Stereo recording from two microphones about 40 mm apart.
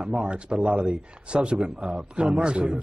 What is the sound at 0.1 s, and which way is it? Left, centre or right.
A man's voice, right.